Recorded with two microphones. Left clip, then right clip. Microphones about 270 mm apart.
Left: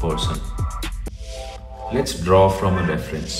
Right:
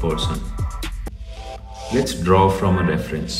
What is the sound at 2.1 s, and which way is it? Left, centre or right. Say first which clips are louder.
Speech: left 2 dB; centre.